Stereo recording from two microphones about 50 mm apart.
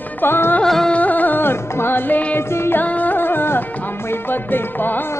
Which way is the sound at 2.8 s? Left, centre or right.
Left.